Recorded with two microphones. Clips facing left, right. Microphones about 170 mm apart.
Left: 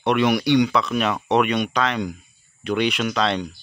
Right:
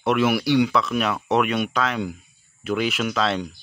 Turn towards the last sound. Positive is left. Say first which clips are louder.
# left 1 dB
turn(degrees=-5)  # may be behind; listen again after turning